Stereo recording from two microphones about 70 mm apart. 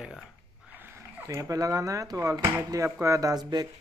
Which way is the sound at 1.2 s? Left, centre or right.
Right.